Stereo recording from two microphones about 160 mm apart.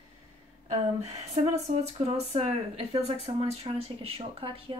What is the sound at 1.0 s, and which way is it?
Speech, 40° right (ahead or behind).